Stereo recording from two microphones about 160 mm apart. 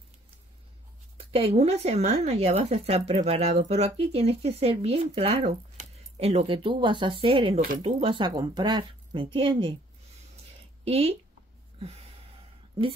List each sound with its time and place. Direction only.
1.1 s speech: 40° right (ahead or behind)
10.8 s speech: 40° right (ahead or behind)
11.8 s a sound: 40° right (ahead or behind)